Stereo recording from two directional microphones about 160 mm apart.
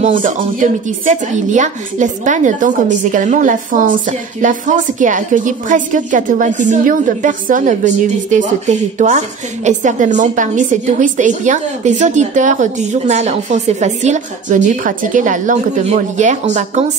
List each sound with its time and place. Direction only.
0.2 s a woman's voice: 55° right (ahead or behind)